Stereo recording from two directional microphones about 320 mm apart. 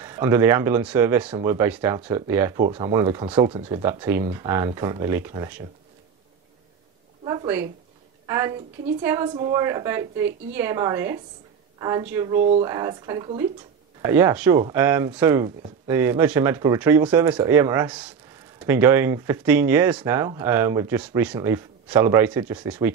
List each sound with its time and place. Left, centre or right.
0.0 s speech: centre
7.2 s a sound: centre
8.3 s speech: centre
12.4 s speech: right
12.6 s speech: centre